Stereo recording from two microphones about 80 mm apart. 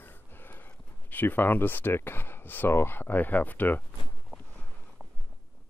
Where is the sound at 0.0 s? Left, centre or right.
Left.